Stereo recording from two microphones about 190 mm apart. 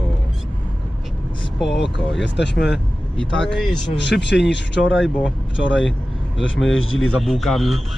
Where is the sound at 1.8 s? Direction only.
65° left (ahead or behind).